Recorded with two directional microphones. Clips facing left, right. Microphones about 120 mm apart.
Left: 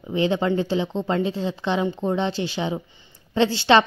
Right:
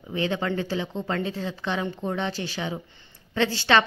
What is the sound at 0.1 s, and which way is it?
Speech, 25° left (ahead or behind).